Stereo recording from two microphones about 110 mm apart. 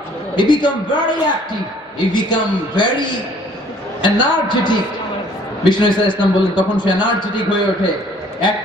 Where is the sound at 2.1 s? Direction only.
45° left (ahead or behind).